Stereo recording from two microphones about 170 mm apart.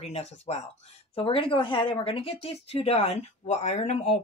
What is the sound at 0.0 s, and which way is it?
Speech, 40° left (ahead or behind).